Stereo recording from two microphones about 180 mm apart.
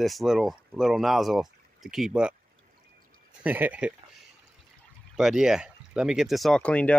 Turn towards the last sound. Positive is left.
turn(degrees=5)  # may be behind; listen again after turning